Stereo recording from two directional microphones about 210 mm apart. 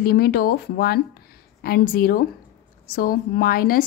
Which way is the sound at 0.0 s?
45° left (ahead or behind).